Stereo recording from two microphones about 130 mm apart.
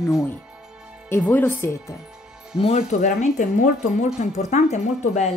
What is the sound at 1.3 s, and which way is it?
Speech, 15° left (ahead or behind).